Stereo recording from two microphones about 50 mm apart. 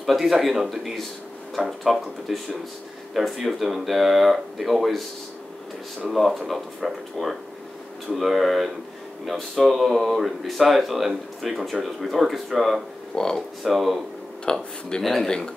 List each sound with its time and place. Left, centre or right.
0.0 s speech: centre
6.0 s speech: centre
13.1 s speech: centre
13.7 s speech: centre
14.4 s speech: centre